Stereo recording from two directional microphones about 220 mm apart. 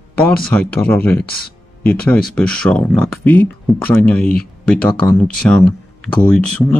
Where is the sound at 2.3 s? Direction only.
5° left (ahead or behind).